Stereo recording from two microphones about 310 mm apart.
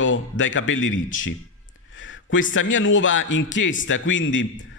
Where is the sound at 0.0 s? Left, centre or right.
Left.